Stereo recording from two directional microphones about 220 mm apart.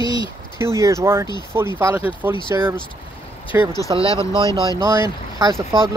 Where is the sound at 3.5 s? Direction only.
10° right (ahead or behind).